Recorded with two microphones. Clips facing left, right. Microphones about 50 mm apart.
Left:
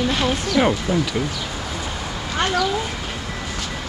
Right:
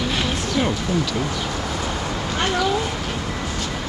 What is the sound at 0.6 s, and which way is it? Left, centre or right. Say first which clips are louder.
Speech: left 3 dB; centre.